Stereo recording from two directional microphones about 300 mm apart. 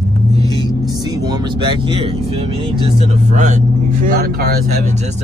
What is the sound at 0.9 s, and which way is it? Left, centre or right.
Speech, centre.